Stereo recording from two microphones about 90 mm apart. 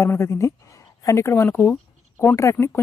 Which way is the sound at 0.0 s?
30° left (ahead or behind).